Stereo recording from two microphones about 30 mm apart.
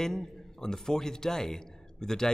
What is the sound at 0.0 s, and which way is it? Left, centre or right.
A man's voice, left.